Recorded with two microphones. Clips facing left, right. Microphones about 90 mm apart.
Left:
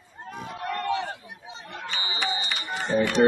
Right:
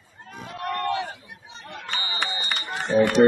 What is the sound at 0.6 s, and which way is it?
Crowd, centre (ahead or behind).